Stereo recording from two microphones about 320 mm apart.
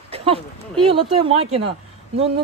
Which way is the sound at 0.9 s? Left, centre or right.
Centre.